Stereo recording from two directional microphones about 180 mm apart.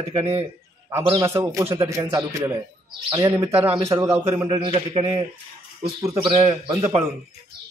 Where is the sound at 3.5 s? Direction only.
35° right (ahead or behind).